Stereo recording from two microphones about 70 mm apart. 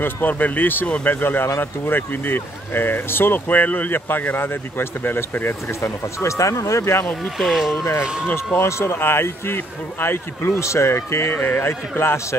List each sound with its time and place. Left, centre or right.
0.0 s speech: left
6.2 s speech: left
7.3 s speech: centre
7.7 s speech: left
8.0 s speech: centre
8.5 s speech: left
11.3 s speech: left